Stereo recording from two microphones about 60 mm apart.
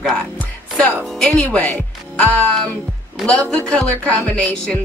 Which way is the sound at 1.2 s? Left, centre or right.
Centre.